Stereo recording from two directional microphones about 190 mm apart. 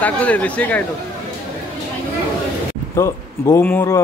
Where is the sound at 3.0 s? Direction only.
15° left (ahead or behind).